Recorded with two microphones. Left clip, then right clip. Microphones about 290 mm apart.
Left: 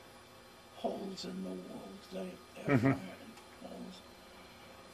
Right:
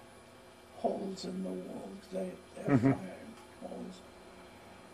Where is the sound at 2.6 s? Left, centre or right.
Centre.